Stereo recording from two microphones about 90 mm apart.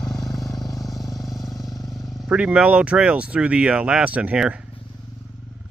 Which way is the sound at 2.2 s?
10° right (ahead or behind).